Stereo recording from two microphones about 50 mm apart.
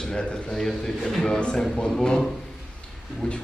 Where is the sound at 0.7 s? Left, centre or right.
Centre.